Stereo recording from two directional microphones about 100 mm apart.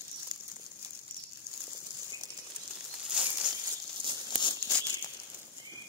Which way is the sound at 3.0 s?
10° right (ahead or behind).